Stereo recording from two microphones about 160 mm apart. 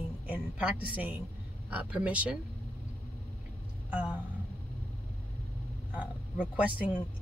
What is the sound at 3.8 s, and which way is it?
Speech, 10° right (ahead or behind).